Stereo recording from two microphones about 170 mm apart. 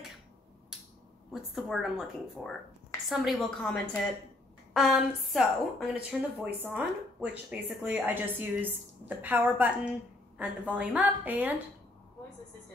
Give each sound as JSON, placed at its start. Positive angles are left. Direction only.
{"t": 1.3, "sound": "a woman's voice", "side_deg": 0}